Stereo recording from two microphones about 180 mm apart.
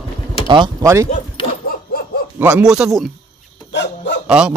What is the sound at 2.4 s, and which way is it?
Speech, 5° right (ahead or behind).